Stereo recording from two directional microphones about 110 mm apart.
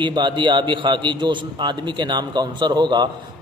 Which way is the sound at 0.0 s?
45° right (ahead or behind).